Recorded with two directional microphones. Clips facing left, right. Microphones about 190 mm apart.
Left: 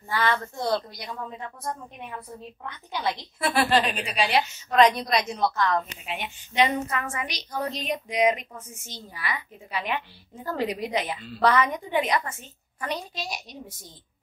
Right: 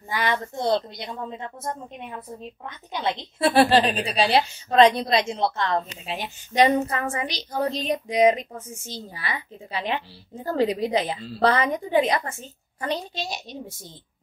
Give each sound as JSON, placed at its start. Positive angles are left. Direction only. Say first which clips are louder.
{"t": 0.1, "sound": "a woman's voice", "louder": "even", "side_deg": -15}